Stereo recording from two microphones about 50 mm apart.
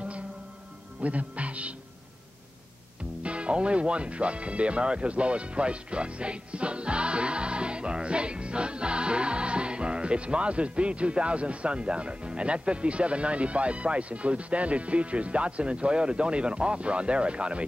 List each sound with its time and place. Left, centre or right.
1.0 s speech: right
3.2 s speech: right